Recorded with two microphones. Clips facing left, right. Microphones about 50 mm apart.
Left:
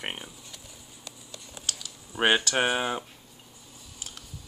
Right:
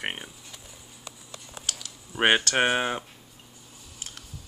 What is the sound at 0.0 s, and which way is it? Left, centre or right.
Speech, centre.